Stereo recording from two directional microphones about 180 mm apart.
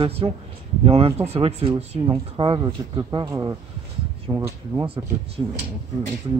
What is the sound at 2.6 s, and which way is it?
A man's voice, 20° right (ahead or behind).